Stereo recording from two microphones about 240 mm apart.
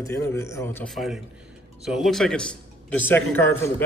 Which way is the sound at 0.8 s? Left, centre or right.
Centre.